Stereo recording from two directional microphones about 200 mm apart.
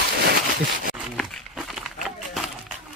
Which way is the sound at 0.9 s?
Centre (ahead or behind).